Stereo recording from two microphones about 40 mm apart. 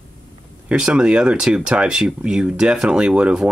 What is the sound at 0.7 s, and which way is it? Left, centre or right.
Speech, right.